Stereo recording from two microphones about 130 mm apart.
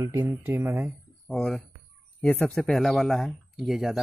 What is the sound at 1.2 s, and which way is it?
Speech, centre (ahead or behind).